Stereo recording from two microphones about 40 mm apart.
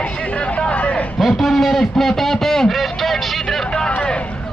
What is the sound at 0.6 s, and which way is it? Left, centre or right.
Speech, left.